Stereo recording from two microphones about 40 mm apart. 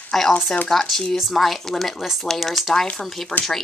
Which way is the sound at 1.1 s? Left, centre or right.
Centre.